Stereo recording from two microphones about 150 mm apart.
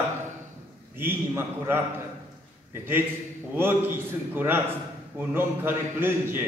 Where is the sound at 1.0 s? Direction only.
15° right (ahead or behind).